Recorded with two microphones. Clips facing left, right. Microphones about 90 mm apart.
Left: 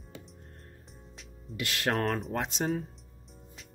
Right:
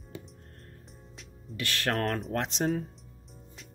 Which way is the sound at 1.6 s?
15° left (ahead or behind).